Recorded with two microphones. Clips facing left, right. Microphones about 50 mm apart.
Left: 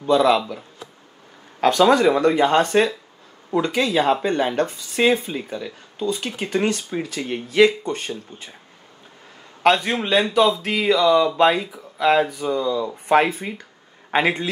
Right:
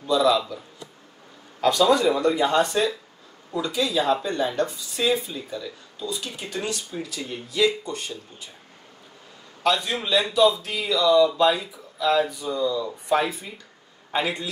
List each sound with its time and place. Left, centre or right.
0.0 s speech: left
1.6 s speech: left
9.6 s a man's voice: left